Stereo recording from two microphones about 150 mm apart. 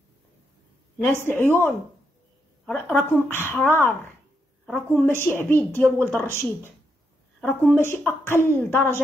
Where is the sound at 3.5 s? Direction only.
15° left (ahead or behind).